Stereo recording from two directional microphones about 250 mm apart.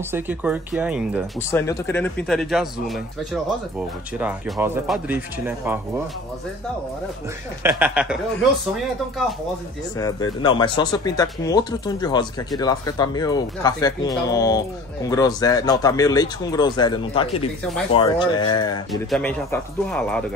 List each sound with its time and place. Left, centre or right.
0.1 s speech: centre
1.5 s speech: centre
4.2 s speech: centre
7.6 s speech: centre
9.9 s speech: centre
18.9 s speech: centre